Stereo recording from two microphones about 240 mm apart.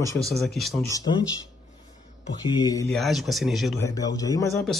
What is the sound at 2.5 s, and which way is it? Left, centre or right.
Speech, centre.